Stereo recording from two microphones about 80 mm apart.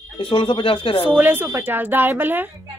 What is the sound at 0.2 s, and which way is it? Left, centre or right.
Speech, left.